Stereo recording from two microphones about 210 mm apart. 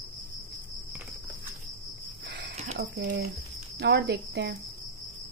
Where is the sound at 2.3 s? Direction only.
55° right (ahead or behind).